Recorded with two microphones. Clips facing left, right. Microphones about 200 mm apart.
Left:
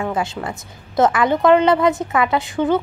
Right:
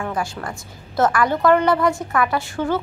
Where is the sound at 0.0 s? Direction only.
20° left (ahead or behind).